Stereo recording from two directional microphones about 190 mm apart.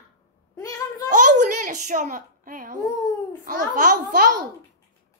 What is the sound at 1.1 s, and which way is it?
A woman's voice, 40° right (ahead or behind).